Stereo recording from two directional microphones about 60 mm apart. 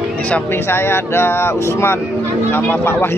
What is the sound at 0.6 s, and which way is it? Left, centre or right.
Speech, left.